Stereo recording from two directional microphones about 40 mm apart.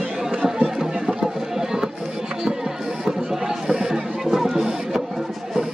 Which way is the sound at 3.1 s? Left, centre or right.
Centre.